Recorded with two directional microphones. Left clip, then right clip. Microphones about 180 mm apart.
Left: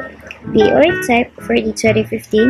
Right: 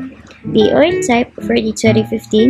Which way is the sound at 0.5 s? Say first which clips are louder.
Even; centre (ahead or behind).